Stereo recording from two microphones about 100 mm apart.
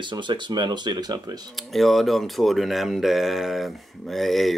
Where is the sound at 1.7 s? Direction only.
Centre (ahead or behind).